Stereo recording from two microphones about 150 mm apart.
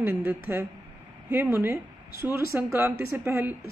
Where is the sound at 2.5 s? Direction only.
15° right (ahead or behind).